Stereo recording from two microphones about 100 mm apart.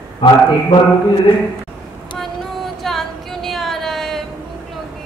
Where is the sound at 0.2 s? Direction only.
65° left (ahead or behind).